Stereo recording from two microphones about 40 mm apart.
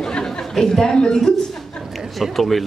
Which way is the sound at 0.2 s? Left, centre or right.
Centre.